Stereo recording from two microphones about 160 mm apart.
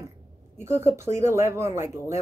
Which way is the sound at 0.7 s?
15° right (ahead or behind).